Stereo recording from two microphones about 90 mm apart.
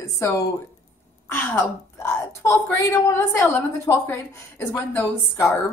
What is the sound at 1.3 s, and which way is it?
A woman's voice, 25° left (ahead or behind).